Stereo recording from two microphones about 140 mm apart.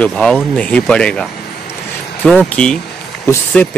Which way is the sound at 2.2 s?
5° left (ahead or behind).